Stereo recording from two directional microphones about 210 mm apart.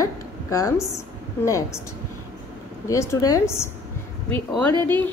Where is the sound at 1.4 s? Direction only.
15° left (ahead or behind).